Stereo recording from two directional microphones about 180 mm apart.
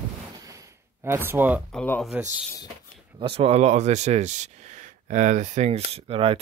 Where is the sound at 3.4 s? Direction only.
35° right (ahead or behind).